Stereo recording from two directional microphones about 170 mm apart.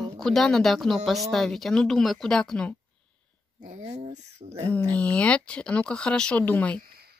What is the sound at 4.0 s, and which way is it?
Speech, 40° right (ahead or behind).